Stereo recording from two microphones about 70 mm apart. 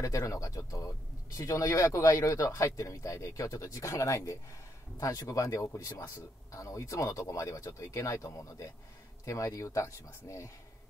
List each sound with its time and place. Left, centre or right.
0.0 s speech: left